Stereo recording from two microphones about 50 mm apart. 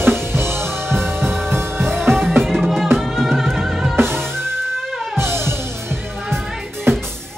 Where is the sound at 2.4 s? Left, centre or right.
Centre.